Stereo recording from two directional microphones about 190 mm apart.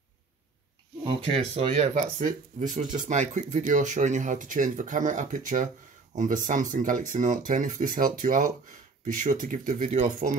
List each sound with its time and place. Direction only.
1.0 s speech: 30° right (ahead or behind)